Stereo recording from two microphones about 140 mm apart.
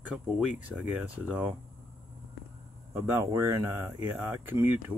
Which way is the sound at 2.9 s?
20° right (ahead or behind).